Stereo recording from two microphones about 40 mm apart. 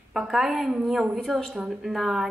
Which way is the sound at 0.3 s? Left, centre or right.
Centre.